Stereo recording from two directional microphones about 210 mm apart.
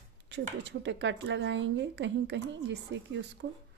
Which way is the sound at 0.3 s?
55° right (ahead or behind).